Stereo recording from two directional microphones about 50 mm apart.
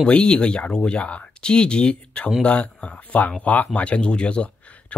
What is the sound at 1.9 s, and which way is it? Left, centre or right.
Speech, left.